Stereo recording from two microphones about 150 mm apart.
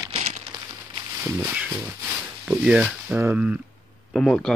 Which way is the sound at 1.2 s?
10° right (ahead or behind).